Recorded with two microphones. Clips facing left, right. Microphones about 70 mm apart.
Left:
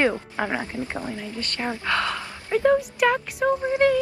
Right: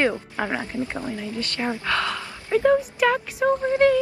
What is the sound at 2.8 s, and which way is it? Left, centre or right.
Speech, centre.